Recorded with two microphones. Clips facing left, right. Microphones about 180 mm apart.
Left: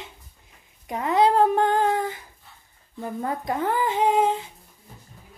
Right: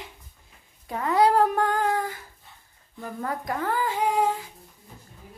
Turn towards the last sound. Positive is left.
turn(degrees=20)  # may be behind; listen again after turning